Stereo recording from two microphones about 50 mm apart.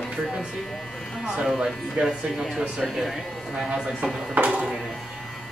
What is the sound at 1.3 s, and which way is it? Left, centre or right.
Speech, centre.